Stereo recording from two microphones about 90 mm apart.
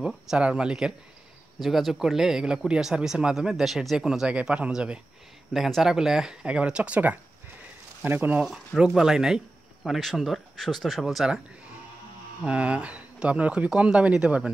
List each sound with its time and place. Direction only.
0.0 s speech: 10° right (ahead or behind)
8.5 s speech: 5° right (ahead or behind)
12.4 s speech: 15° right (ahead or behind)